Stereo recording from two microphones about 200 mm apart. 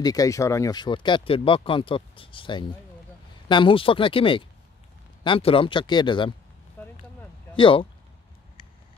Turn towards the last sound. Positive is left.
turn(degrees=25)  # may be behind; listen again after turning